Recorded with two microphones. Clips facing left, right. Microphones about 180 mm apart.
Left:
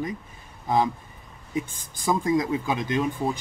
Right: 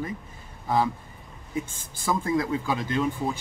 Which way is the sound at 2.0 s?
15° left (ahead or behind).